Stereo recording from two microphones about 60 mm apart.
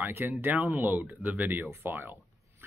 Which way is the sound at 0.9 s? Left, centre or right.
Right.